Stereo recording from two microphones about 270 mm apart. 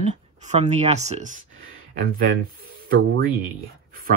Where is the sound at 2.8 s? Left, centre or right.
Right.